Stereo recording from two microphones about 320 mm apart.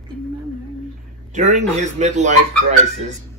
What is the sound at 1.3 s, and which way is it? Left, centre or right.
A man's voice, right.